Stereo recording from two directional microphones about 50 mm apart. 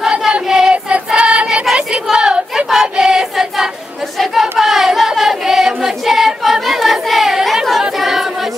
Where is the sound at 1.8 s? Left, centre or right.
Centre.